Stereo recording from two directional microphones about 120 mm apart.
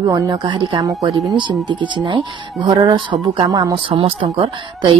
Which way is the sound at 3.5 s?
30° right (ahead or behind).